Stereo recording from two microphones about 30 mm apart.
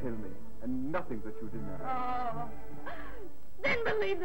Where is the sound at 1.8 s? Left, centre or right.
Centre.